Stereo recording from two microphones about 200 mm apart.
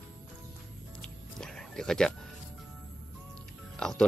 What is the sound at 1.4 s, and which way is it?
Music, 5° left (ahead or behind).